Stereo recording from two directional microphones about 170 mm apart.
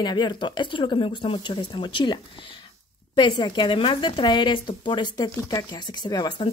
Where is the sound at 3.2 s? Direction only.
25° left (ahead or behind).